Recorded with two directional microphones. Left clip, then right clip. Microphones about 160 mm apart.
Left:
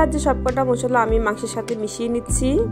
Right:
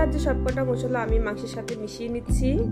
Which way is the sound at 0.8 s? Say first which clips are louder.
Left 8 dB; 15° left (ahead or behind).